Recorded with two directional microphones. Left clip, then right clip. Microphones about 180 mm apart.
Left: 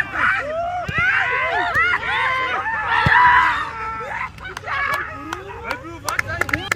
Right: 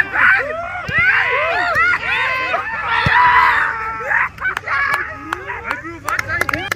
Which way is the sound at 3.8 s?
15° left (ahead or behind).